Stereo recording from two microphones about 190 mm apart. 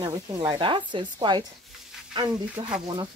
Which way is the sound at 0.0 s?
20° right (ahead or behind).